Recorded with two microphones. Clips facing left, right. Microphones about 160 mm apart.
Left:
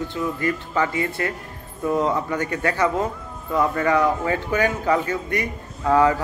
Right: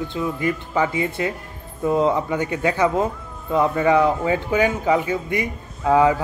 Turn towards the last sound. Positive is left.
turn(degrees=-15)  # may be behind; listen again after turning